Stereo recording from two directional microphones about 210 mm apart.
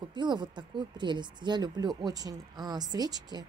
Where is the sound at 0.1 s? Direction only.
20° right (ahead or behind).